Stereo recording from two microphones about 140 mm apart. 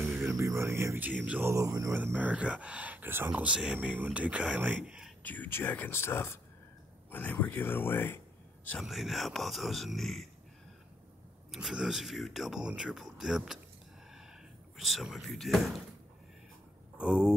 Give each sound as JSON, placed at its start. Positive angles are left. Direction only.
{"t": 0.0, "sound": "music", "side_deg": -20}
{"t": 1.5, "sound": "speech", "side_deg": -20}
{"t": 2.0, "sound": "speech", "side_deg": -10}
{"t": 5.2, "sound": "speech", "side_deg": 10}
{"t": 8.8, "sound": "speech", "side_deg": 0}
{"t": 11.5, "sound": "speech", "side_deg": -5}
{"t": 14.8, "sound": "speech", "side_deg": 0}
{"t": 16.9, "sound": "a sound", "side_deg": -5}